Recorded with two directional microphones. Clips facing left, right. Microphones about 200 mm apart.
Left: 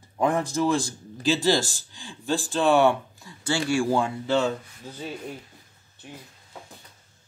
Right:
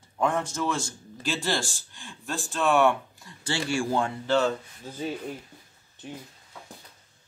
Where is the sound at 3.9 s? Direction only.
10° left (ahead or behind).